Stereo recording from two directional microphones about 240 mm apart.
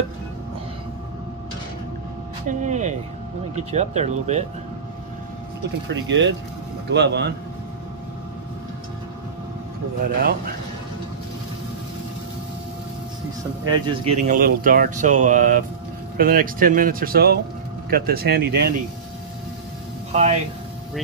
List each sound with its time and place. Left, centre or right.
2.4 s speech: right
5.9 s speech: right
13.7 s speech: centre
14.2 s speech: right
20.1 s speech: right